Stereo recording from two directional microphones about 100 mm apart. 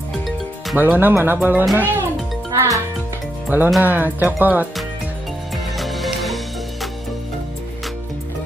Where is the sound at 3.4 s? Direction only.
20° right (ahead or behind).